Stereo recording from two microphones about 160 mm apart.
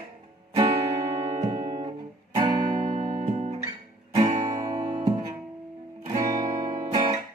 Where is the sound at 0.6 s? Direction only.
35° right (ahead or behind).